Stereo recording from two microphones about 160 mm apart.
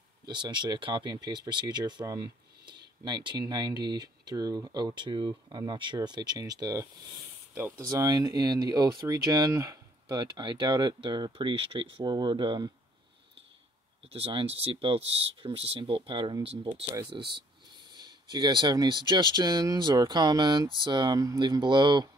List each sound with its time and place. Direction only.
0.3 s speech: 30° right (ahead or behind)
14.1 s speech: 35° right (ahead or behind)
17.1 s speech: 25° right (ahead or behind)